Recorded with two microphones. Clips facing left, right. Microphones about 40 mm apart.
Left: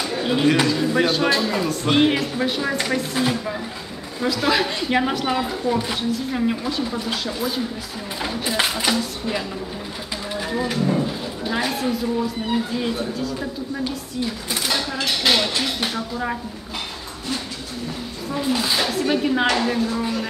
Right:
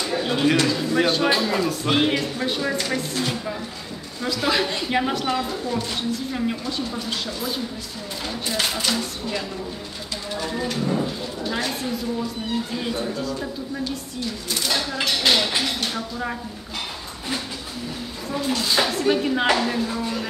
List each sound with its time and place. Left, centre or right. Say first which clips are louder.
0.0 s speech: left 2 dB; centre
8.2 s speech: left 3 dB; centre
10.3 s speech: left 2 dB; centre
14.7 s a sound: left 1 dB; centre
15.0 s speech: left 1 dB; centre
18.3 s speech: left 2 dB; centre
18.8 s speech: even; centre